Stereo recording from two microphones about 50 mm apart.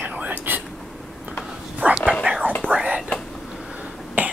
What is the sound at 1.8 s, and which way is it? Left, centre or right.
Whispering, right.